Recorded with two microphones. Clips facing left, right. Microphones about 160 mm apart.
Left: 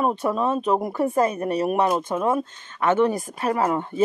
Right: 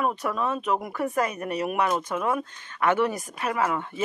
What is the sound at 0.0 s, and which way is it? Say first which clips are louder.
Speech: left 4 dB; 30° left (ahead or behind).